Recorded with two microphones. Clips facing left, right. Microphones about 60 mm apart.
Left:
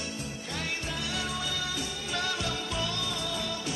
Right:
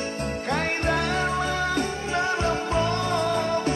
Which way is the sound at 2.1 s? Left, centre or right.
Right.